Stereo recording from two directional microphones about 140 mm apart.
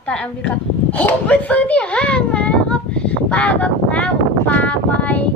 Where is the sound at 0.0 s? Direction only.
5° left (ahead or behind).